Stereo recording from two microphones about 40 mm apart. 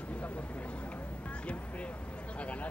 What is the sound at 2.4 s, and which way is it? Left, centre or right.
Speech, left.